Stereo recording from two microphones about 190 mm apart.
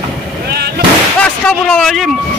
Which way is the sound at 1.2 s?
5° left (ahead or behind).